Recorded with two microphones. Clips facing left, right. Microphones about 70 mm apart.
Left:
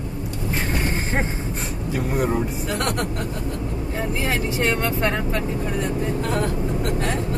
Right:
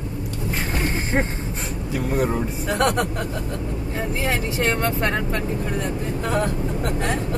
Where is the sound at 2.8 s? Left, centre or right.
Right.